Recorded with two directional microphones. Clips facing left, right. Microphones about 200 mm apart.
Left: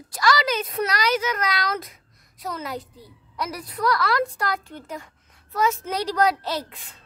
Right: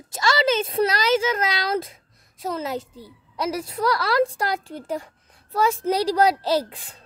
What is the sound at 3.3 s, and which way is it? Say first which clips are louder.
A woman's voice: right 4 dB; 25° right (ahead or behind).